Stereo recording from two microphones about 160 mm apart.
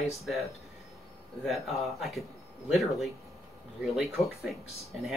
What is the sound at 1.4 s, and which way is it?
Speech, centre (ahead or behind).